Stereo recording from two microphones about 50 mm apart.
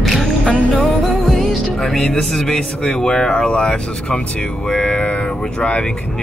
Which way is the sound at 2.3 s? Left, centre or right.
Centre.